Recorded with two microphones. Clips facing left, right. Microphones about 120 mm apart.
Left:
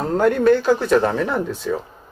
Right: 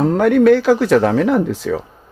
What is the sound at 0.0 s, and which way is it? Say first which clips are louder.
Speech: right 4 dB; 70° right (ahead or behind).